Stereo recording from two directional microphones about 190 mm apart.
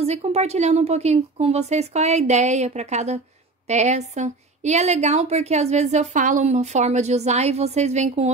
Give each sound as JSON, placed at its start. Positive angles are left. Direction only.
{"t": 0.0, "sound": "a woman's voice", "side_deg": -35}